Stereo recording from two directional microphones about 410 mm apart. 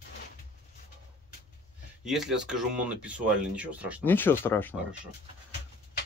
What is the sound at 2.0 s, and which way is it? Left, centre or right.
Speech, centre.